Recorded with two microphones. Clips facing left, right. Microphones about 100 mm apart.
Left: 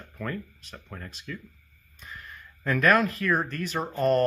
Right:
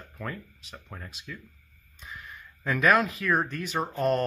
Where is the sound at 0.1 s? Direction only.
Centre (ahead or behind).